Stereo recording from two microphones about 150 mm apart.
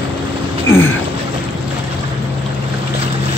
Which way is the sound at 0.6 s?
15° left (ahead or behind).